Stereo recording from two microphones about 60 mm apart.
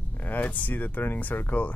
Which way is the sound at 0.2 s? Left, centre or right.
Left.